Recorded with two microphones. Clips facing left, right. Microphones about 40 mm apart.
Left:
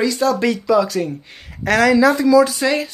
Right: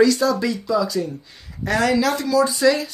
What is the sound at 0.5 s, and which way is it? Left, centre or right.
Speech, left.